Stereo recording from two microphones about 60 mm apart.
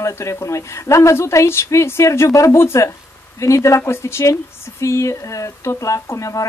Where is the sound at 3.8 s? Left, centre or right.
Left.